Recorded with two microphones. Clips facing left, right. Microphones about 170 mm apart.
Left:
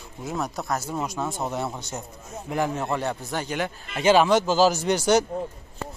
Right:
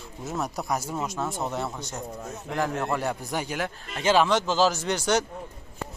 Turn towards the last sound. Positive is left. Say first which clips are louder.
# left 4 dB
turn(degrees=10)  # may be behind; listen again after turning